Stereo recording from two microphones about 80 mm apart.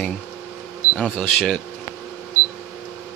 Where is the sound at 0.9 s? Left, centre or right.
Centre.